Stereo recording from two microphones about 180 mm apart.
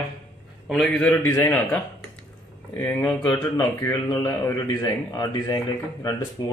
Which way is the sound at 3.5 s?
20° left (ahead or behind).